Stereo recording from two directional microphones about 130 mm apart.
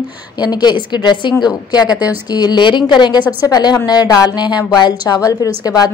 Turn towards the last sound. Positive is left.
turn(degrees=30)  # may be behind; listen again after turning